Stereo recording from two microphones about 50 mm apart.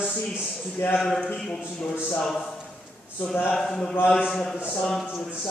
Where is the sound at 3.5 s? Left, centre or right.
Centre.